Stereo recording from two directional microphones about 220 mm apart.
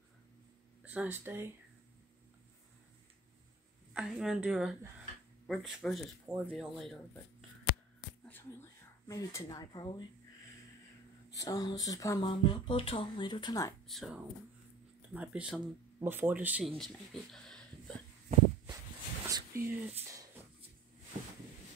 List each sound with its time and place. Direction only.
0.8 s speech: 10° right (ahead or behind)
3.9 s speech: centre (ahead or behind)
8.3 s speech: 10° left (ahead or behind)
11.3 s speech: 15° left (ahead or behind)
13.8 s speech: centre (ahead or behind)
19.2 s a sound: 15° right (ahead or behind)